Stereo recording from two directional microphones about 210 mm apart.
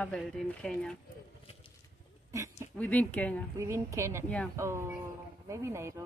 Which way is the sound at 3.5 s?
15° right (ahead or behind).